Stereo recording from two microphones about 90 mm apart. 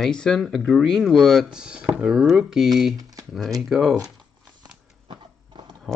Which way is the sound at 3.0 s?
40° right (ahead or behind).